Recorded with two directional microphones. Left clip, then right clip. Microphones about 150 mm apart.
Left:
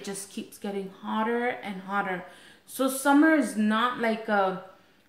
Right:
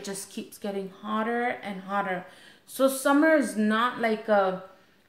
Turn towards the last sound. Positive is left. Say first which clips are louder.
# right 2 dB
turn(degrees=-20)  # may be behind; listen again after turning